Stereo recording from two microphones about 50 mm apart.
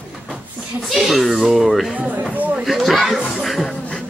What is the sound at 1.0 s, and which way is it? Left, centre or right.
Speech, centre.